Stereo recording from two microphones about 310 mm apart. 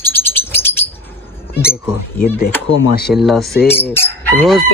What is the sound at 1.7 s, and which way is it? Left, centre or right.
Speech, left.